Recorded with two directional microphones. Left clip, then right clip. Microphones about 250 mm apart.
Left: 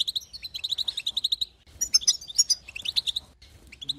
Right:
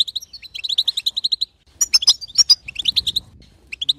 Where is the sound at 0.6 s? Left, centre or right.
Right.